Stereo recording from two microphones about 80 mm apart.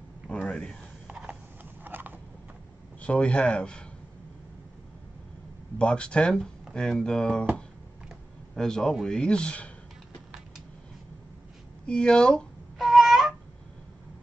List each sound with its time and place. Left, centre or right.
0.3 s a sound: centre
1.0 s mechanisms: centre
1.9 s a sound: right
3.0 s speech: centre
5.8 s speech: centre
8.5 s speech: centre
11.8 s speech: centre
12.7 s cat: centre